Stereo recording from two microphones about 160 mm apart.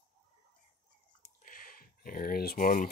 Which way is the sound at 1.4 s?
60° left (ahead or behind).